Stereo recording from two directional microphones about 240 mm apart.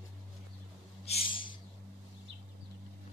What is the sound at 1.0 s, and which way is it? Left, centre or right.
Owl, left.